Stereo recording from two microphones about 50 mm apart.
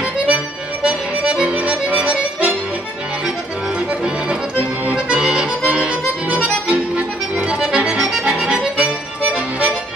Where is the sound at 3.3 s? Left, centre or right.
Centre.